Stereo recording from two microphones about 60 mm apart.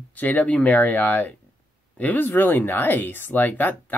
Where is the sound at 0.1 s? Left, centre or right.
Left.